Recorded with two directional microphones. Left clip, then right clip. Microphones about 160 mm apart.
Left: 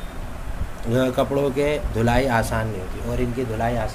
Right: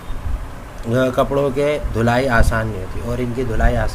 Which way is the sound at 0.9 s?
10° right (ahead or behind).